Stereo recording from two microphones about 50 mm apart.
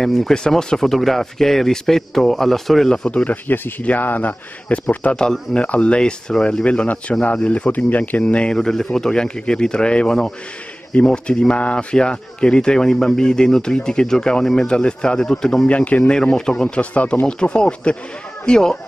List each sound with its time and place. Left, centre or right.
0.0 s speech: centre
3.1 s speech: left
3.4 s speech: left
5.1 s speech: centre; by 8.2 s left
8.2 s speech: left
8.5 s speech: centre
15.7 s speech: left
16.3 s speech: centre
16.7 s speech: left
17.3 s speech: centre